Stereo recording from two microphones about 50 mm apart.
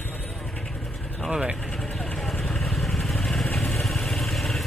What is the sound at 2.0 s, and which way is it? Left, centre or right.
Vehicle, centre.